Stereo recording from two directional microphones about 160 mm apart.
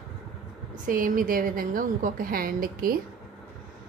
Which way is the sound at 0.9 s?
60° right (ahead or behind).